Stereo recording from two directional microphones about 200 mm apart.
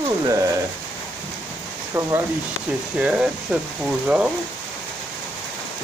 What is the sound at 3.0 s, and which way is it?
Speech, 5° right (ahead or behind).